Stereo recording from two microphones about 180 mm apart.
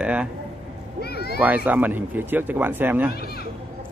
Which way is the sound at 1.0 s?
60° left (ahead or behind).